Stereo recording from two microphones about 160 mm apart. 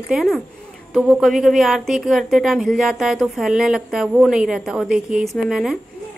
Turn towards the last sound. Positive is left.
turn(degrees=0)  # may be behind; listen again after turning